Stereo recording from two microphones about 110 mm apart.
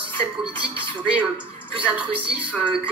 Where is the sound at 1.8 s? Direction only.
15° right (ahead or behind).